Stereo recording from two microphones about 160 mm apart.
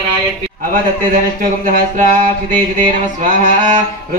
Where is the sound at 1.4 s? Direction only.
60° right (ahead or behind).